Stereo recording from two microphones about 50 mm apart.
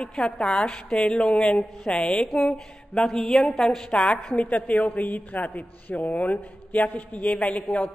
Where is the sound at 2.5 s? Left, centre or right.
Centre.